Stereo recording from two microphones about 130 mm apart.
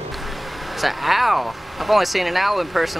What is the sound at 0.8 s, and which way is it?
Speech, centre (ahead or behind).